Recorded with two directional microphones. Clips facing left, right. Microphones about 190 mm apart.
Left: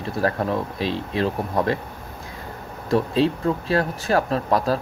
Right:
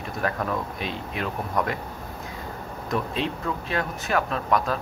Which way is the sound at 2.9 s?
35° left (ahead or behind).